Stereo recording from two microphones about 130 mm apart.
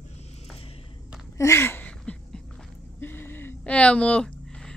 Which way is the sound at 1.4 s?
20° left (ahead or behind).